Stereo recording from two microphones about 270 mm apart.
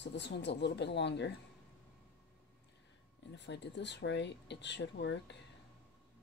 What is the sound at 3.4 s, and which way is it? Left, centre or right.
Speech, left.